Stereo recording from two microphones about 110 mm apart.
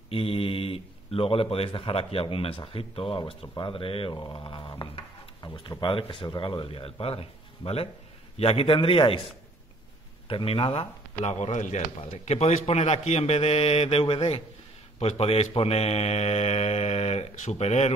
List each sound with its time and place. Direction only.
0.1 s a man's voice: 55° left (ahead or behind)
4.1 s speech: 40° left (ahead or behind)
10.2 s speech: 55° left (ahead or behind); by 17.9 s 80° left